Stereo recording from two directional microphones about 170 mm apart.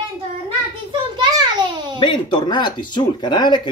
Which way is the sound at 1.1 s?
25° right (ahead or behind).